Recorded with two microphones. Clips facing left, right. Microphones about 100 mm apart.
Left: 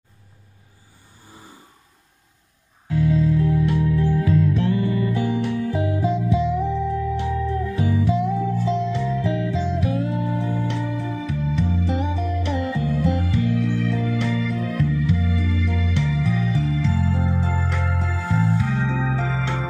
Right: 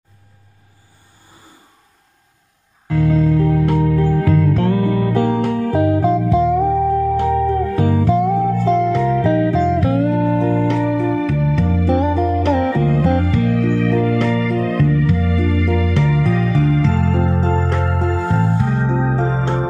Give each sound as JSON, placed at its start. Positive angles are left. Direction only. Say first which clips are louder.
{"t": 2.9, "sound": "music", "louder": "right 4 dB", "side_deg": -65}
{"t": 11.8, "sound": "music", "louder": "right 9 dB", "side_deg": -55}